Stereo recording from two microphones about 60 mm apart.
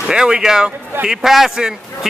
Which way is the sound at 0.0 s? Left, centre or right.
Centre.